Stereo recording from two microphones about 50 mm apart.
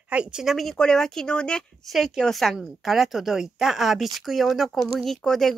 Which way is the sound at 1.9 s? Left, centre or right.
Centre.